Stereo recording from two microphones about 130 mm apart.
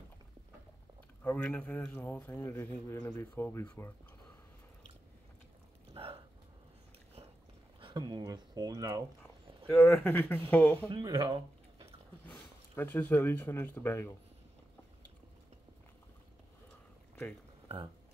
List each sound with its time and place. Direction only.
1.2 s a man's voice: 10° left (ahead or behind)
5.9 s a sound: 45° right (ahead or behind)
7.8 s speech: 35° right (ahead or behind)
9.7 s a man's voice: 15° left (ahead or behind)
11.0 s speech: 35° right (ahead or behind)
12.3 s speech: 15° left (ahead or behind)